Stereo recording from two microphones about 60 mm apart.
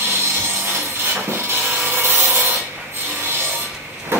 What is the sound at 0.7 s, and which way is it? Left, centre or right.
Wood, right.